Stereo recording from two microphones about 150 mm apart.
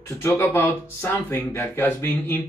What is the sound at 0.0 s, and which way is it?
Speech, 15° left (ahead or behind).